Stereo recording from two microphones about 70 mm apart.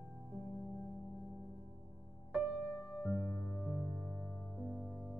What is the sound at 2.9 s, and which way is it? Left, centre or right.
Music, centre.